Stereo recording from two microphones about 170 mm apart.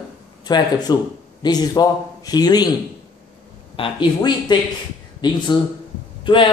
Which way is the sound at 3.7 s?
30° left (ahead or behind).